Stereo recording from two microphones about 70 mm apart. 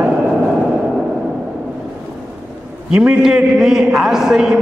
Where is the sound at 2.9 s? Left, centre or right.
Centre.